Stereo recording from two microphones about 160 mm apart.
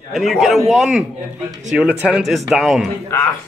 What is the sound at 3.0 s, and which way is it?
Speech, 15° left (ahead or behind).